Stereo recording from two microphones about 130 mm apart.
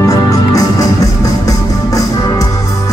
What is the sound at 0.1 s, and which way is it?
Music, 25° left (ahead or behind).